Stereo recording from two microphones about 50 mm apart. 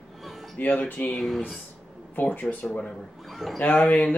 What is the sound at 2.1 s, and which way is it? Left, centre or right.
Speech, left.